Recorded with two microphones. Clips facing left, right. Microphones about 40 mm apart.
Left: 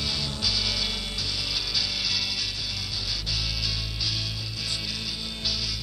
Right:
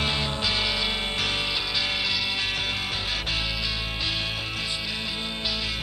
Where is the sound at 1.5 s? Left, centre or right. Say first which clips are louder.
Right 3 dB; right.